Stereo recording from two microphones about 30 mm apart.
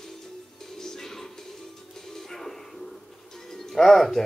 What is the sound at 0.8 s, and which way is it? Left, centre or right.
Music, centre.